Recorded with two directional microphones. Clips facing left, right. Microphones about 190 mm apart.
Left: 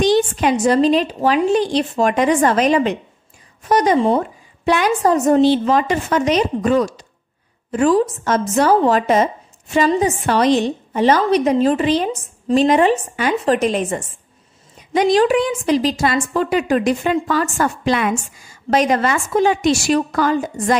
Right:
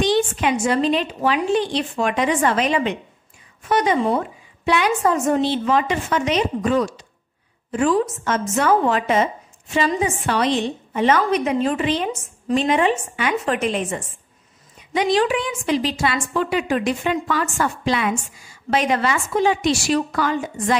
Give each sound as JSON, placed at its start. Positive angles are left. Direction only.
{"t": 0.0, "sound": "a woman's voice", "side_deg": 40}